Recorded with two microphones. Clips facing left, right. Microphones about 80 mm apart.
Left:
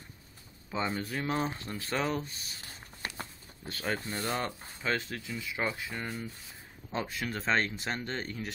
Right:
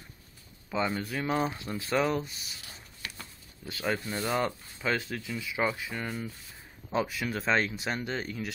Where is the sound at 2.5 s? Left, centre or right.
Left.